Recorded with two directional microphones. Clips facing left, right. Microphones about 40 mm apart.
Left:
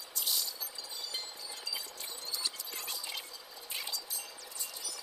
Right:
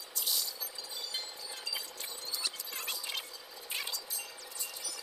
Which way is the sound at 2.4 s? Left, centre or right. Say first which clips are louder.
Right 1 dB; right.